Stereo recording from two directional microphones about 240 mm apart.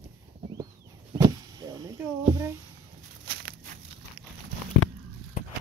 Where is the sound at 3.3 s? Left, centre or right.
Right.